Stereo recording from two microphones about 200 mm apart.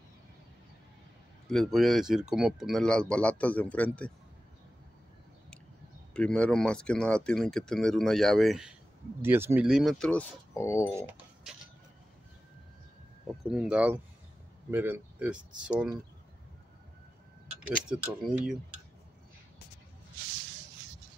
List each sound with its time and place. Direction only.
1.5 s speech: centre (ahead or behind)
6.1 s speech: 5° left (ahead or behind)
11.0 s pigeon: 10° right (ahead or behind)
13.5 s speech: 5° right (ahead or behind)
17.6 s speech: 5° right (ahead or behind)